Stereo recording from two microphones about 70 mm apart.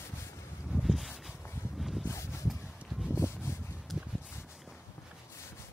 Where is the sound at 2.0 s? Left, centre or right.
Left.